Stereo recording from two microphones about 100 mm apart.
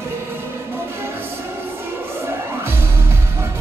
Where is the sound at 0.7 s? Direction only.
25° right (ahead or behind).